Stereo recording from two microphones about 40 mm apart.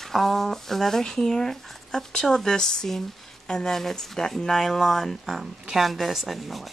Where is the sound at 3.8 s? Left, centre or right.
Centre.